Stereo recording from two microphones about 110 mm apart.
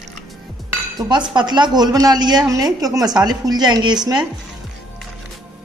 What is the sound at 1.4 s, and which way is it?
Speech, 45° right (ahead or behind).